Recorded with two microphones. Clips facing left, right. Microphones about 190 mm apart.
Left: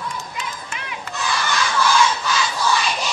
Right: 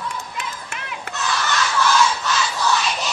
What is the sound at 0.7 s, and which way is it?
Crowd, centre (ahead or behind).